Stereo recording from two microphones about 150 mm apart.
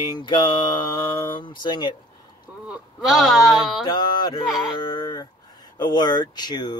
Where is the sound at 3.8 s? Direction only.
30° left (ahead or behind).